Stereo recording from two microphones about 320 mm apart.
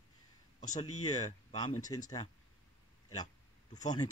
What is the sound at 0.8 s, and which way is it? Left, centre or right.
Speech, left.